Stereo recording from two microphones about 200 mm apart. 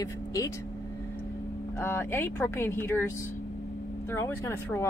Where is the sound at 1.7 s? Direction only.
10° left (ahead or behind).